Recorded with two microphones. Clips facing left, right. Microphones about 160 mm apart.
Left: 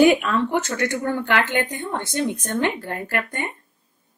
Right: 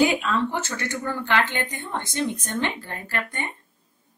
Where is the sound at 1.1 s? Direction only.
50° left (ahead or behind).